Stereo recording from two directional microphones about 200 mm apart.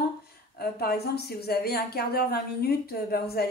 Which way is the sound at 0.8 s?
50° left (ahead or behind).